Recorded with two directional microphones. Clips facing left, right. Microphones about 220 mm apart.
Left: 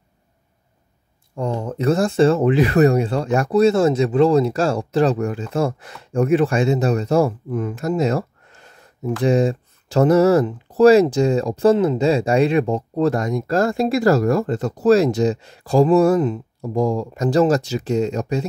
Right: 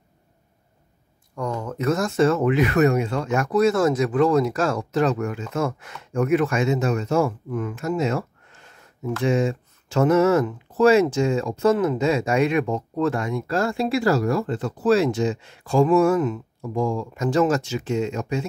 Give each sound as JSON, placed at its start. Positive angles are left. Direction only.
{"t": 1.3, "sound": "speech", "side_deg": 30}